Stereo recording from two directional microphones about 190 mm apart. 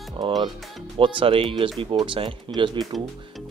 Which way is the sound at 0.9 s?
30° right (ahead or behind).